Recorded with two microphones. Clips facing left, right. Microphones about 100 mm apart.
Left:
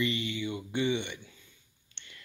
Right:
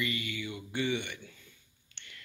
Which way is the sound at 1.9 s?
25° left (ahead or behind).